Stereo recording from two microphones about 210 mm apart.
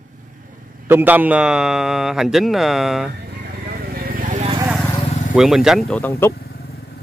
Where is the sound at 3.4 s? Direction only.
50° right (ahead or behind).